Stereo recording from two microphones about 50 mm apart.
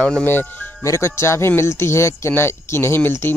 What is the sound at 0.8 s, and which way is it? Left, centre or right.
Speech, left.